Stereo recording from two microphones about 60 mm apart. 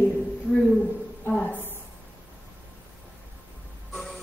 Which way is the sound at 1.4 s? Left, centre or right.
Left.